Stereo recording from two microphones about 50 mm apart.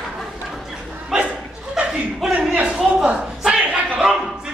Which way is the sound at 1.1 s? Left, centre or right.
Centre.